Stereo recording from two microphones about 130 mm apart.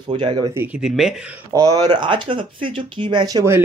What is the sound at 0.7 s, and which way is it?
Speech, 5° right (ahead or behind).